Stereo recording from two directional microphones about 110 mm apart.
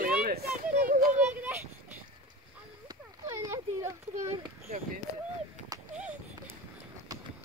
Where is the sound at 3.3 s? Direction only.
30° right (ahead or behind).